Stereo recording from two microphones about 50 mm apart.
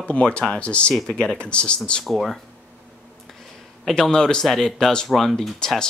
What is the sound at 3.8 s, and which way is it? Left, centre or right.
Speech, centre.